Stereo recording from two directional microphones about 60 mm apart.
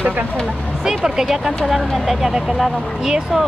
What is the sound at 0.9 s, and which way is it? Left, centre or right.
Speech, centre.